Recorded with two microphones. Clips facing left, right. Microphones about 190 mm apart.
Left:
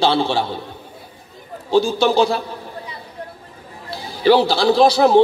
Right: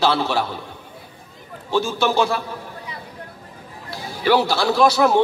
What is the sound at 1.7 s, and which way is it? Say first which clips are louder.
Speech: left 5 dB; 35° left (ahead or behind).